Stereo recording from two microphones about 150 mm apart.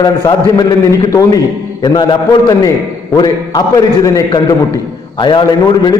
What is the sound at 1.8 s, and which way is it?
A man's voice, 30° left (ahead or behind).